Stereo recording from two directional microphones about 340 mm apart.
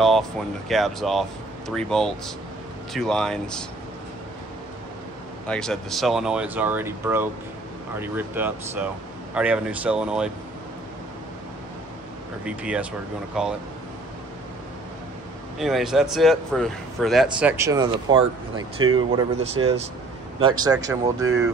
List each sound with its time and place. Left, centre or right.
0.0 s speech: centre
5.5 s speech: centre
12.4 s speech: centre
15.6 s speech: centre